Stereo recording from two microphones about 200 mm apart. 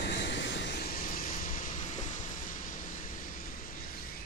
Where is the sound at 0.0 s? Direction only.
60° left (ahead or behind).